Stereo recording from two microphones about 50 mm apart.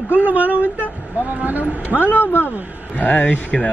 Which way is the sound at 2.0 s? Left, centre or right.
Left.